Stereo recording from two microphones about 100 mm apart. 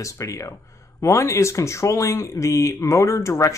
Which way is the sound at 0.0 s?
30° left (ahead or behind).